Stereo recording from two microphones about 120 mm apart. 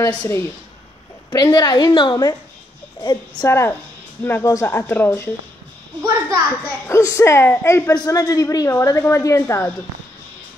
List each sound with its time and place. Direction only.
1.3 s a woman's voice: 35° left (ahead or behind)
3.4 s a woman's voice: 20° left (ahead or behind)
6.0 s a child's voice: 30° right (ahead or behind)
6.6 s a woman's voice: 25° left (ahead or behind)
7.9 s a woman's voice: 35° left (ahead or behind)